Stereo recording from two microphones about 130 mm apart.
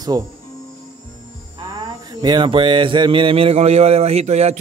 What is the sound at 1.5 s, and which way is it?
Mantra, 35° right (ahead or behind).